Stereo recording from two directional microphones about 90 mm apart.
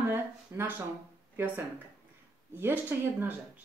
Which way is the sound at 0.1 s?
25° right (ahead or behind).